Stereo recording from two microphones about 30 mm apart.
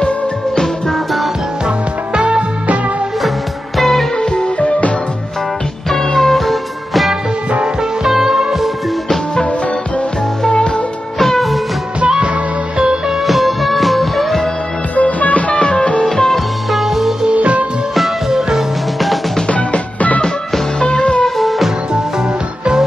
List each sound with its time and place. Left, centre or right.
4.6 s music: left
5.9 s music: centre
11.1 s music: centre
12.7 s music: right
13.3 s music: centre
15.0 s music: left
15.6 s music: left
16.1 s music: centre
16.7 s music: centre
17.3 s music: right
19.5 s music: left
20.8 s music: left
21.4 s music: centre